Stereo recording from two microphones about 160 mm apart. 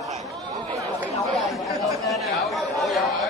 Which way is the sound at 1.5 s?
Centre (ahead or behind).